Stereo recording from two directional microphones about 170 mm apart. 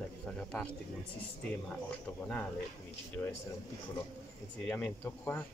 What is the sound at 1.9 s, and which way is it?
Speech, 5° left (ahead or behind).